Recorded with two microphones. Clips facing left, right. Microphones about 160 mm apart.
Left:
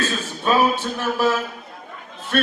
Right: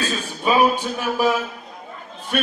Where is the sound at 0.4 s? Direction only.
10° right (ahead or behind).